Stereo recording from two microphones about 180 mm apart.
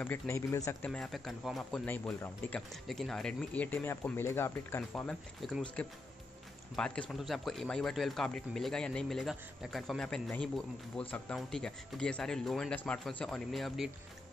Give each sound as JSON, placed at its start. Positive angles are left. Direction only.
{"t": 0.0, "sound": "speech", "side_deg": 15}
{"t": 0.8, "sound": "speech", "side_deg": 5}